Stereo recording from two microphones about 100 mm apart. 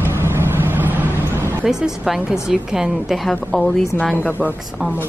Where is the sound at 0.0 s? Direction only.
25° right (ahead or behind).